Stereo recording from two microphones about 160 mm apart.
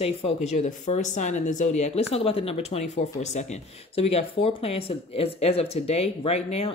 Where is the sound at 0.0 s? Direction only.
40° left (ahead or behind).